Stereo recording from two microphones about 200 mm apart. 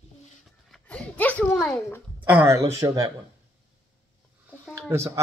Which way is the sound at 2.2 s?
10° right (ahead or behind).